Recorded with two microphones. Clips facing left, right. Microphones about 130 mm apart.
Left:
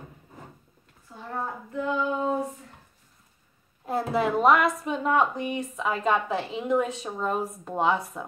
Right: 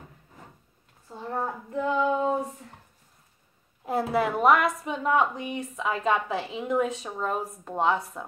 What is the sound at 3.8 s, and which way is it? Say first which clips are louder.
A woman's voice: even; 10° right (ahead or behind).